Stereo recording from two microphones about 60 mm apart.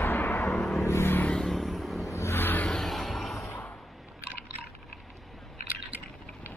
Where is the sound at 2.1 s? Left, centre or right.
Left.